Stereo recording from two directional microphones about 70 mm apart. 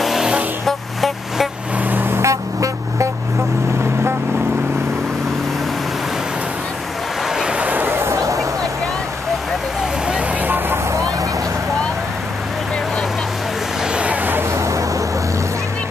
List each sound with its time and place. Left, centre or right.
0.0 s music: centre
0.7 s vehicle: centre
1.9 s vehicle: right
2.2 s music: right
7.2 s a sound: centre; by 8.2 s right
8.2 s music: right
10.4 s vehicle: right
13.9 s a sound: centre
14.5 s vehicle: right